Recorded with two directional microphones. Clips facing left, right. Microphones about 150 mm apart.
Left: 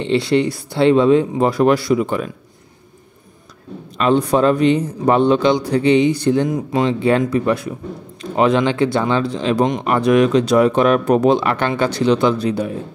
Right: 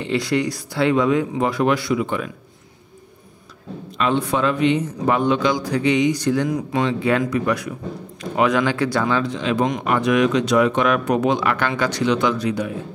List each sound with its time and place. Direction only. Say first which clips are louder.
0.0 s speech: left 5 dB; 25° left (ahead or behind)
4.0 s speech: left 5 dB; 40° left (ahead or behind)